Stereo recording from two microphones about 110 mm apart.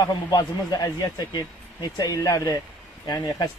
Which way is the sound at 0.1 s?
35° left (ahead or behind).